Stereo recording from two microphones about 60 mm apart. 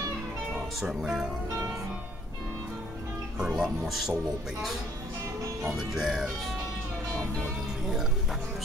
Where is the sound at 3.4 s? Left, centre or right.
Centre.